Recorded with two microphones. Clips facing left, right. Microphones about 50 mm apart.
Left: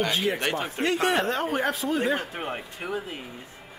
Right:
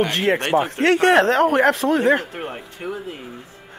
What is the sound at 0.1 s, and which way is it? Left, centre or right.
Speech, right.